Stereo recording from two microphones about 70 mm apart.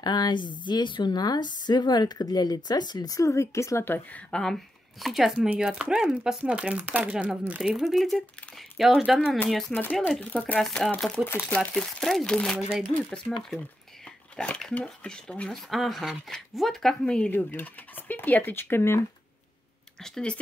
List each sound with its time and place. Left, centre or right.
0.0 s speech: left
3.2 s speech: left
4.3 s speech: centre
5.0 s speech: centre
7.7 s speech: centre
11.4 s speech: centre
12.5 s speech: centre
15.5 s speech: centre
17.5 s speech: left
20.0 s speech: centre